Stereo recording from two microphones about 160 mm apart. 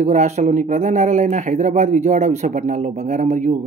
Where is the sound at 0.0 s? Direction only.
50° right (ahead or behind).